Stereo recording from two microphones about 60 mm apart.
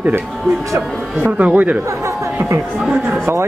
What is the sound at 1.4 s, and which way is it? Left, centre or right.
Speech, right.